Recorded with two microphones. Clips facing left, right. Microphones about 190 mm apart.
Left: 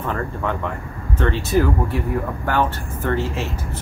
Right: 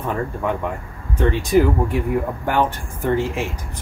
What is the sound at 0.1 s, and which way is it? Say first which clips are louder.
Speech: right 3 dB; 15° right (ahead or behind).